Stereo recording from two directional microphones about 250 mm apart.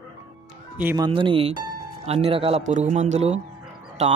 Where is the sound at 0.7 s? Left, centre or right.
Centre.